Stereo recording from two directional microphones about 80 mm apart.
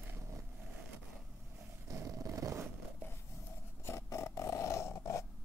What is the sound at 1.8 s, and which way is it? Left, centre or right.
Vehicle, right.